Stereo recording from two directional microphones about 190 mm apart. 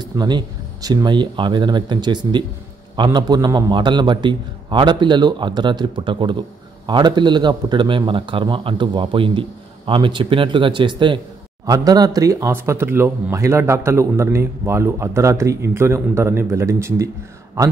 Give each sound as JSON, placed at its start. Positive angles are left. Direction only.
{"t": 0.0, "sound": "a man's voice", "side_deg": -20}